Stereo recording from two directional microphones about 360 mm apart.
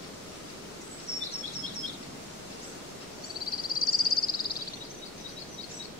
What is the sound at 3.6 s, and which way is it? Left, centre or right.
Caw, left.